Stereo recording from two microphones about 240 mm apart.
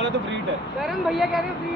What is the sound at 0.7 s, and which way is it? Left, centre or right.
Speech, centre.